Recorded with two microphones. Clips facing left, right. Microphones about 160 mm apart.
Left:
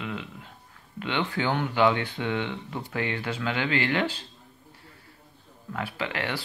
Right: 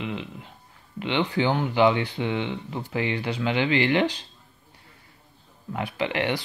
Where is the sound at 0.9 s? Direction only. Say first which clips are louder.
Right 4 dB; 10° right (ahead or behind).